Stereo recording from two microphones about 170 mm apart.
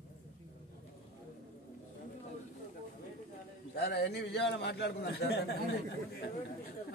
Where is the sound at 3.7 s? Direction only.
75° left (ahead or behind).